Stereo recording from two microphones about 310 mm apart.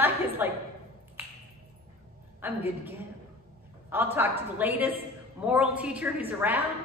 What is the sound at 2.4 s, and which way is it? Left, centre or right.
Speech, centre.